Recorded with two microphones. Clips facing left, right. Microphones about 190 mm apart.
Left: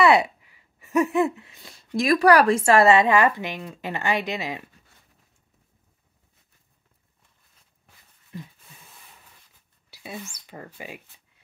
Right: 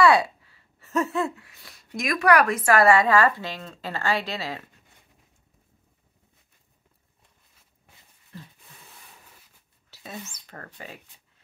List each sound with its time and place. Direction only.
0.0 s speech: 20° left (ahead or behind)
8.3 s a sound: 15° left (ahead or behind)
9.8 s speech: 10° left (ahead or behind)